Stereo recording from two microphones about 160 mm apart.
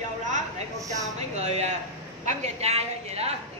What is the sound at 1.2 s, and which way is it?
A woman's voice, 45° right (ahead or behind).